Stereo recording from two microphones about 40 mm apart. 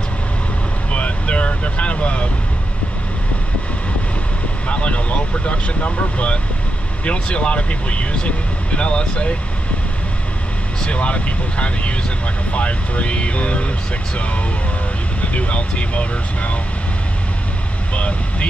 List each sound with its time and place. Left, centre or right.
0.9 s vehicle: left
4.6 s speech: left
10.8 s speech: left
17.9 s speech: left